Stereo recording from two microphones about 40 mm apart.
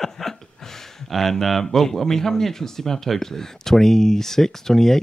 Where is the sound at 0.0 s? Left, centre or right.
Centre.